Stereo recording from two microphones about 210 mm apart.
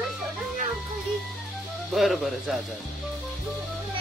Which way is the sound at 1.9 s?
Centre (ahead or behind).